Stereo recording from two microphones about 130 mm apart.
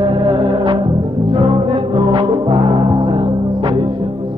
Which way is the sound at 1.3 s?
40° right (ahead or behind).